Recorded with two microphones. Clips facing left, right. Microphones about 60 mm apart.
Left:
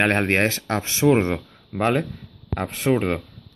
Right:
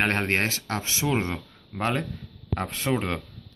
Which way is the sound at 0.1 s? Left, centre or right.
Left.